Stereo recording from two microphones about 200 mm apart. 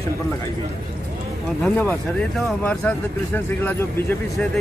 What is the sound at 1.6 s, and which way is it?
Speech, 10° left (ahead or behind).